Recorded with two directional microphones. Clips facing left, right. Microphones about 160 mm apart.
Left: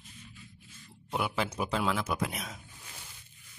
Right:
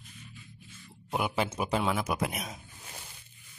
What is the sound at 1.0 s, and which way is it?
Speech, 5° right (ahead or behind).